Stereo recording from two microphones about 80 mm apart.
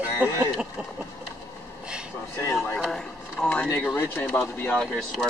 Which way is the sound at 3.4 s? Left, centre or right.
Centre.